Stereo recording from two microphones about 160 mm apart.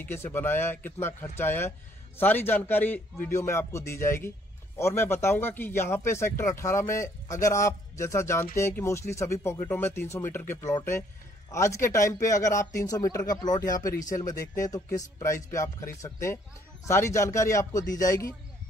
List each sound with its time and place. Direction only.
0.0 s speech: 15° left (ahead or behind)